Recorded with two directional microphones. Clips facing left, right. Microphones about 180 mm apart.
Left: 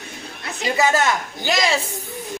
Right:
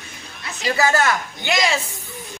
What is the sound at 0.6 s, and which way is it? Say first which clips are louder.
Speech: even; 20° left (ahead or behind).